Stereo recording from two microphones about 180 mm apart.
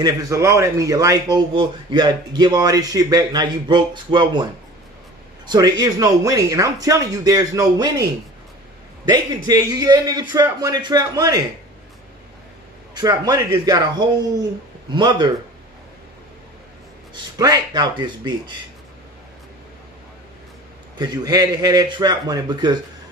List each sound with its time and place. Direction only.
0.0 s speech: 15° right (ahead or behind)
5.5 s speech: 20° right (ahead or behind)
9.1 s speech: 20° right (ahead or behind)
12.9 s speech: 20° right (ahead or behind)
17.1 s speech: 20° right (ahead or behind)
21.0 s speech: 20° right (ahead or behind)